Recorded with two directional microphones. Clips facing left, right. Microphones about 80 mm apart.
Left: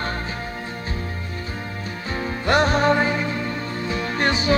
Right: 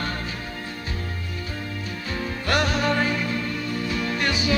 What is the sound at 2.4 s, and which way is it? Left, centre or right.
Music, left.